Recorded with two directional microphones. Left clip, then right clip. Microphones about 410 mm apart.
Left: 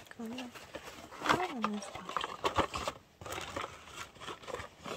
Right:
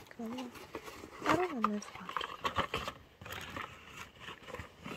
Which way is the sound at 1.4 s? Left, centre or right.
Centre.